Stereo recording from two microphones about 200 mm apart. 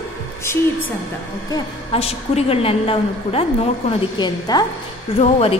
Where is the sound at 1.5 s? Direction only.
30° left (ahead or behind).